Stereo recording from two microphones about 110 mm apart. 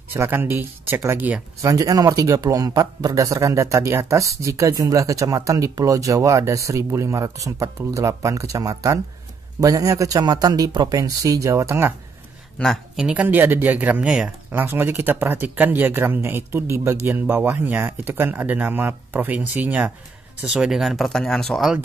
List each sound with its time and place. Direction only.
0.1 s a man's voice: 20° right (ahead or behind)
12.6 s speech: 10° left (ahead or behind)
12.9 s speech: 10° right (ahead or behind)
14.5 s speech: 20° right (ahead or behind); by 21.7 s centre (ahead or behind)